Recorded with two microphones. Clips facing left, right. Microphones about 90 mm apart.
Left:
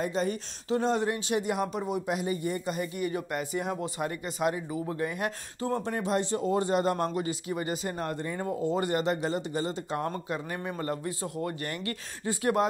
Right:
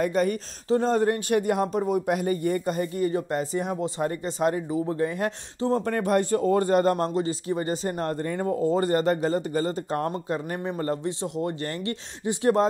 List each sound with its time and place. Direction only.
0.0 s speech: 55° right (ahead or behind)
0.7 s speech: 40° right (ahead or behind)
1.6 s speech: 35° right (ahead or behind)
3.6 s speech: 20° right (ahead or behind)
4.0 s speech: 35° right (ahead or behind)
5.9 s speech: 55° right (ahead or behind)
7.0 s speech: 30° right (ahead or behind)